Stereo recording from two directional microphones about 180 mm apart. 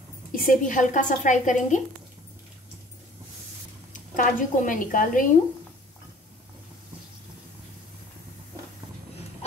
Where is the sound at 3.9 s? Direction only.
45° left (ahead or behind).